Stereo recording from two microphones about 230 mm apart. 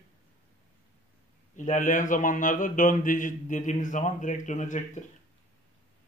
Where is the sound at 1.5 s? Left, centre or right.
Left.